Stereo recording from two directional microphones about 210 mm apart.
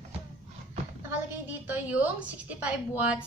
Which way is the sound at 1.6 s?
5° right (ahead or behind).